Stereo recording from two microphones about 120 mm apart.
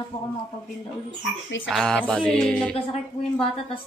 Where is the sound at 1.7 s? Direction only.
5° left (ahead or behind).